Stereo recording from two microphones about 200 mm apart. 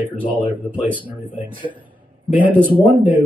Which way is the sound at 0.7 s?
10° right (ahead or behind).